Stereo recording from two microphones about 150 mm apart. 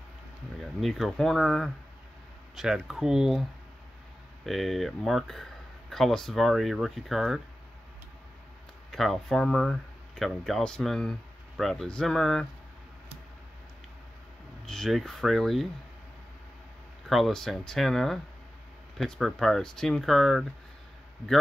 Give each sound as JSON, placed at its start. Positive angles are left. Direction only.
{"t": 0.6, "sound": "speech", "side_deg": 0}
{"t": 4.5, "sound": "speech", "side_deg": 0}
{"t": 8.9, "sound": "speech", "side_deg": 0}
{"t": 14.7, "sound": "speech", "side_deg": 0}
{"t": 17.1, "sound": "speech", "side_deg": 0}